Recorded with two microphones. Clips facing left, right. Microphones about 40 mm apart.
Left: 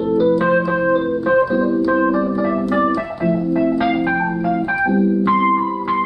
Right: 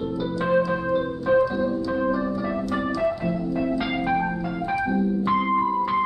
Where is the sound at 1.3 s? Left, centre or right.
Left.